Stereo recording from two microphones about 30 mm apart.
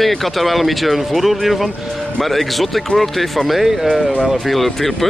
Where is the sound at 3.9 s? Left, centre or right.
Right.